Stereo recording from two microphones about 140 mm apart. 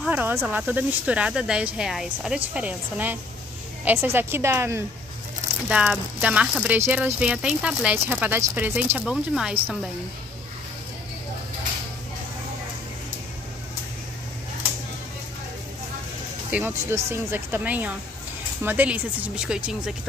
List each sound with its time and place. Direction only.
0.0 s snake: 15° right (ahead or behind)
0.5 s speech: 10° right (ahead or behind)
5.7 s speech: 10° right (ahead or behind)
16.5 s speech: 15° right (ahead or behind)